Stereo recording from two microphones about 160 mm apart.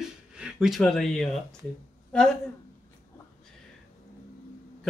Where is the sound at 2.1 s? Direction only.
5° left (ahead or behind).